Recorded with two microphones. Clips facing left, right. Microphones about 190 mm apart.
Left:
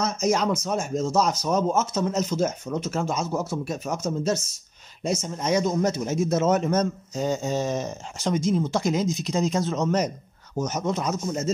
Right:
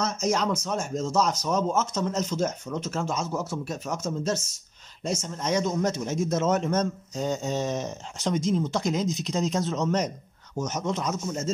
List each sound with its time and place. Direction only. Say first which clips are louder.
0.0 s speech: left 3 dB; 10° left (ahead or behind)
10.6 s speech: left 3 dB; 15° left (ahead or behind)